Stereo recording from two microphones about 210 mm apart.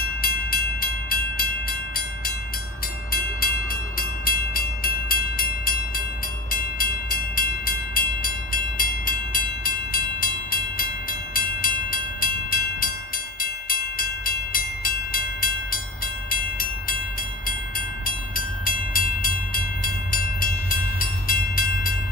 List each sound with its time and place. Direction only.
0.2 s train: 45° left (ahead or behind)